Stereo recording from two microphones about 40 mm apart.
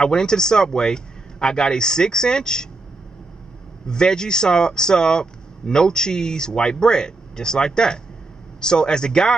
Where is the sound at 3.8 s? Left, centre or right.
Centre.